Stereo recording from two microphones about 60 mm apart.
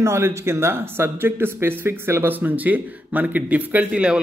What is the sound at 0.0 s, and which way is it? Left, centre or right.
Speech, right.